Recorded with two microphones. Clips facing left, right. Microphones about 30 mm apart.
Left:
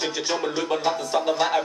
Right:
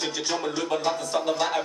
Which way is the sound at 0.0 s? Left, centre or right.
Centre.